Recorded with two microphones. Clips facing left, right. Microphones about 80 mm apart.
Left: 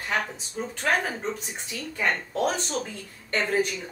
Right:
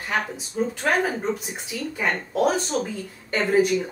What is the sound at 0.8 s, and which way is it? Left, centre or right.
Speech, centre.